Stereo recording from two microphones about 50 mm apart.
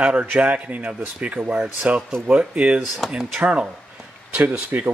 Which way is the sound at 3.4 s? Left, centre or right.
Right.